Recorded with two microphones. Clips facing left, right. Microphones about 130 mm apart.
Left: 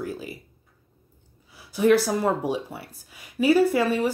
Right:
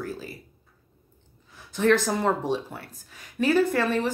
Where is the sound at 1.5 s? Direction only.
10° left (ahead or behind).